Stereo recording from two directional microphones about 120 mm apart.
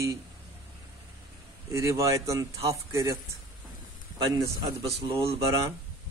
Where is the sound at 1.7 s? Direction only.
25° right (ahead or behind).